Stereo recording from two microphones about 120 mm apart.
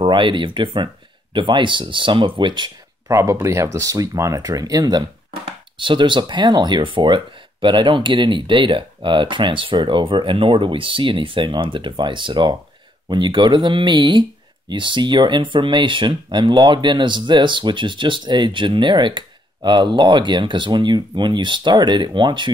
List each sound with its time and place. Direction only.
0.0 s speech: 45° right (ahead or behind)
3.1 s speech: 25° right (ahead or behind)
5.4 s speech: 45° right (ahead or behind)